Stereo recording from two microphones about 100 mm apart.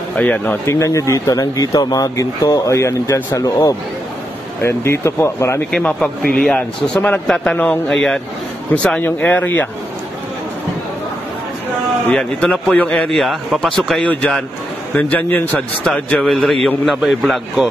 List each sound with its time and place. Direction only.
0.1 s a man's voice: 15° left (ahead or behind)
0.7 s speech: 30° left (ahead or behind)
3.3 s speech: 40° left (ahead or behind)
5.7 s a man's voice: 10° left (ahead or behind)
12.1 s a man's voice: 10° left (ahead or behind)
15.0 s a man's voice: 15° left (ahead or behind)
15.8 s a man's voice: 5° left (ahead or behind)